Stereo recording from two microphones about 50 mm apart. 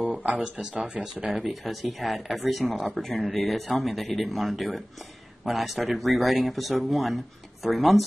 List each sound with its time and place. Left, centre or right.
0.4 s speech: centre
1.3 s speech: centre